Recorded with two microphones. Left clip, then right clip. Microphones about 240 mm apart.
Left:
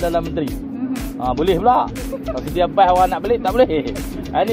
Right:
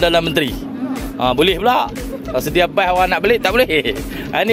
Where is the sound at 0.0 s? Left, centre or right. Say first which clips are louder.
Right 6 dB; right.